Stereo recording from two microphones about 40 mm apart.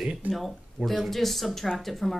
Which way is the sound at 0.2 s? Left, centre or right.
Right.